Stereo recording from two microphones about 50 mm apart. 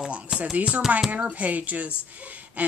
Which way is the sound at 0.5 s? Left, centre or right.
Right.